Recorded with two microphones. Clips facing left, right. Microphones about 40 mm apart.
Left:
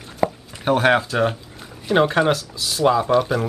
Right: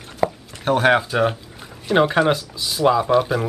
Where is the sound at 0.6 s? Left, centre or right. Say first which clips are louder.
Even; centre.